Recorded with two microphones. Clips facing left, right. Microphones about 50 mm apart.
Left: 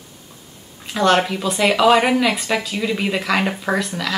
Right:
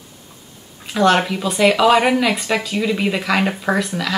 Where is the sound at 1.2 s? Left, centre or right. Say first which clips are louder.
Right 3 dB; centre.